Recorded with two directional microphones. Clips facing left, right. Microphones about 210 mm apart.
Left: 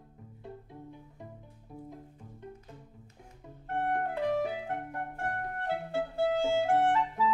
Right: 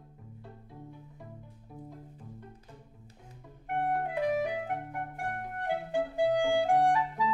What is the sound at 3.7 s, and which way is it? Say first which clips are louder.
Clarinet: even; 15° right (ahead or behind).